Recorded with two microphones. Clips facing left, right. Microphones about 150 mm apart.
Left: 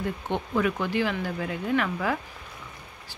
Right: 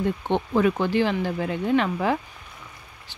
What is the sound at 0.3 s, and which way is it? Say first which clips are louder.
A woman's voice: right 4 dB; 30° right (ahead or behind).